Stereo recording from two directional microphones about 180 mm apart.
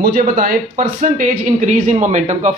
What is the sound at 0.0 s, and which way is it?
Speech, 55° right (ahead or behind).